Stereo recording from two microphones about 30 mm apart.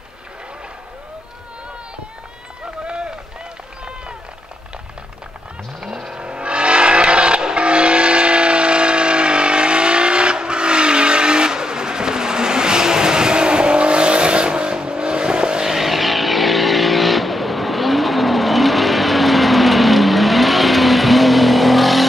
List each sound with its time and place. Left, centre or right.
5.8 s vehicle: centre
6.1 s vehicle: right
15.6 s vehicle: centre